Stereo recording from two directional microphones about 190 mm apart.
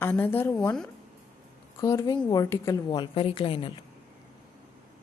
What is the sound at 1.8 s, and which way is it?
A woman's voice, 20° left (ahead or behind).